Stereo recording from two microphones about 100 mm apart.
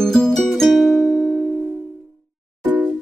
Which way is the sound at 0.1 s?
5° left (ahead or behind).